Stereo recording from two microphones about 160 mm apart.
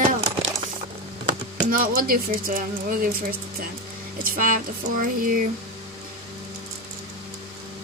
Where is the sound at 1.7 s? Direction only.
60° right (ahead or behind).